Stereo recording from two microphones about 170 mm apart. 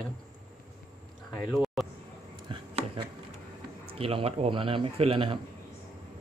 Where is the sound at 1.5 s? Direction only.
Centre (ahead or behind).